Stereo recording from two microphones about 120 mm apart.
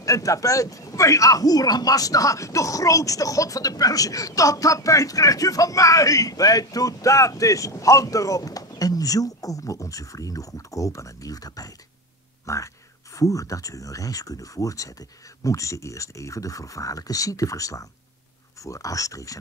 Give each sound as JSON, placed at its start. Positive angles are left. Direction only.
{"t": 0.0, "sound": "speech", "side_deg": 30}